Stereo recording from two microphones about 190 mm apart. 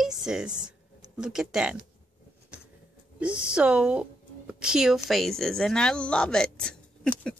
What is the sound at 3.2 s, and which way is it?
Speech, 5° right (ahead or behind).